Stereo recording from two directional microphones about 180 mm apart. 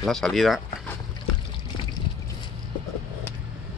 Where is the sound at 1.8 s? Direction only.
25° left (ahead or behind).